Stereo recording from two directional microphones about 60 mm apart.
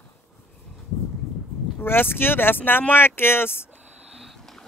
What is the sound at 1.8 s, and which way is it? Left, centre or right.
Speech, left.